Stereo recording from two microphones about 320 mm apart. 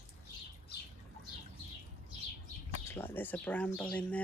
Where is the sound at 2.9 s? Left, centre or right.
Centre.